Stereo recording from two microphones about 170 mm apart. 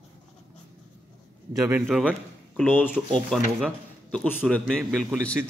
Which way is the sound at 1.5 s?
15° right (ahead or behind).